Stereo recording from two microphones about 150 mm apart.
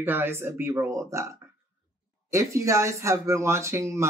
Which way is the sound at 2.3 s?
20° right (ahead or behind).